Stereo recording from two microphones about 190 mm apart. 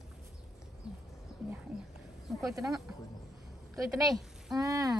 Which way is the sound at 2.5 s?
20° right (ahead or behind).